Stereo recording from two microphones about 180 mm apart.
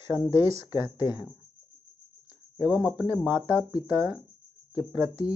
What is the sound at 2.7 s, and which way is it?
Speech, 25° left (ahead or behind).